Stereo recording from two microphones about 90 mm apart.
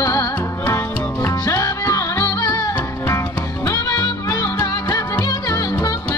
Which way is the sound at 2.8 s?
30° left (ahead or behind).